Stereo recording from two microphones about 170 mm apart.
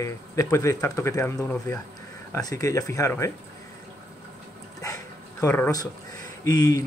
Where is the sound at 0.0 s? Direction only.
20° left (ahead or behind).